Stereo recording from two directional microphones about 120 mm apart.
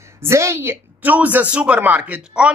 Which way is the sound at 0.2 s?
25° right (ahead or behind).